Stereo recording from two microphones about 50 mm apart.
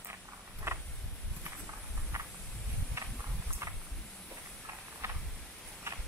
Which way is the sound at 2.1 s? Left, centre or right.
Right.